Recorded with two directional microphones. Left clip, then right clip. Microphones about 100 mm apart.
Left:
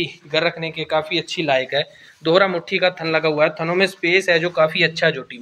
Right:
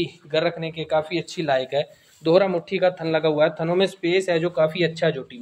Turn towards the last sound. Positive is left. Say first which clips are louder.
# left 4 dB
turn(degrees=-25)  # may be behind; listen again after turning